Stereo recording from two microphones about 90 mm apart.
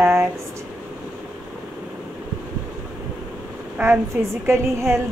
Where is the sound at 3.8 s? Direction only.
25° right (ahead or behind).